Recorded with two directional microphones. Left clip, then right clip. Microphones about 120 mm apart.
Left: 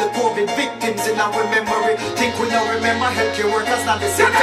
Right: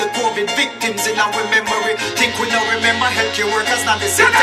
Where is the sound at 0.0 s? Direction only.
20° right (ahead or behind).